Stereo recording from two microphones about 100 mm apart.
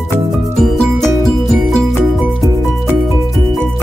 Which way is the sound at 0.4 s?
Centre (ahead or behind).